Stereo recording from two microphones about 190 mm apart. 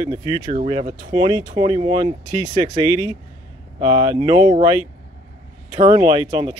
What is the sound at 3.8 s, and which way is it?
Speech, 25° right (ahead or behind).